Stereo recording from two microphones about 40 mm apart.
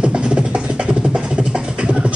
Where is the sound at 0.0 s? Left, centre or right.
Right.